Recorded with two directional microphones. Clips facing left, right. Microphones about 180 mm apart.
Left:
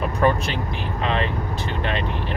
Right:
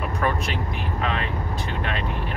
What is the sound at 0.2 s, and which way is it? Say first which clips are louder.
Speech: left 6 dB; 30° left (ahead or behind).